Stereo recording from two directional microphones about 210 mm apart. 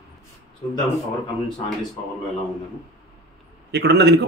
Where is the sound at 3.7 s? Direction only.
50° right (ahead or behind).